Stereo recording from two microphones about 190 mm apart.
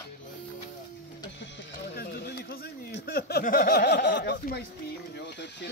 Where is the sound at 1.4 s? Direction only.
55° left (ahead or behind).